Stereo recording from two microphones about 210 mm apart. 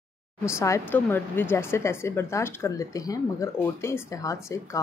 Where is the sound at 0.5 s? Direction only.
15° left (ahead or behind).